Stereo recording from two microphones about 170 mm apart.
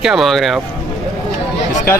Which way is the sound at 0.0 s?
Centre (ahead or behind).